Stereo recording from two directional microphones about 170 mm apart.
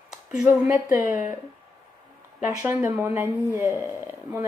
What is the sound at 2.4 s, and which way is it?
Speech, 10° right (ahead or behind).